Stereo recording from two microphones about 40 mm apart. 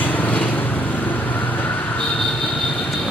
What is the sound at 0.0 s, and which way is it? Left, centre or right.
Vehicle, left.